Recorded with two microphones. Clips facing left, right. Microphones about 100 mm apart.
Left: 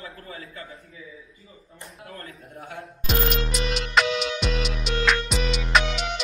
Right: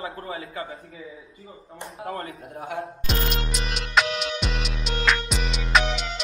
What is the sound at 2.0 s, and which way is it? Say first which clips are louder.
Speech: right 9 dB; 90° right.